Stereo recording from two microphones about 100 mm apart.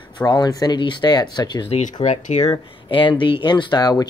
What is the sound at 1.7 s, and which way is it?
Speech, 90° left.